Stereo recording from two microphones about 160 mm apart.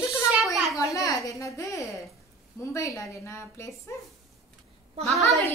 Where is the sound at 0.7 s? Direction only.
20° left (ahead or behind).